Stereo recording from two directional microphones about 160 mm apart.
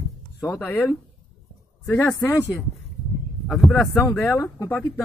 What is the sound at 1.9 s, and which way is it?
Speech, 10° left (ahead or behind).